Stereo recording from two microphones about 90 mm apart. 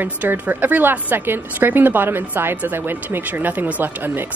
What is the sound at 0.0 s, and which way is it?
A woman's voice, 20° right (ahead or behind).